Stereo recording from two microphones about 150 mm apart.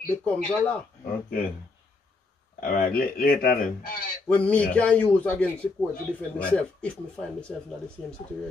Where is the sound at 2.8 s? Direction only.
80° left.